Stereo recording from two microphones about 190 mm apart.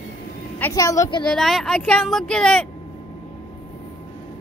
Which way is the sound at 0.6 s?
15° left (ahead or behind).